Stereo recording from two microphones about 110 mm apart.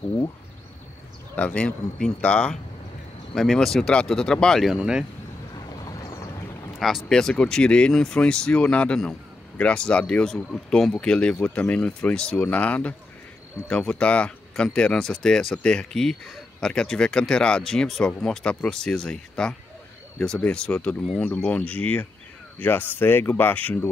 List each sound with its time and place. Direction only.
1.3 s speech: 10° left (ahead or behind)
4.7 s speech: 10° right (ahead or behind)
6.8 s speech: centre (ahead or behind); by 23.9 s 15° left (ahead or behind)